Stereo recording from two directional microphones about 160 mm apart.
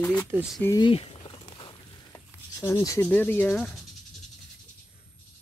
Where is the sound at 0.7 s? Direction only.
35° left (ahead or behind).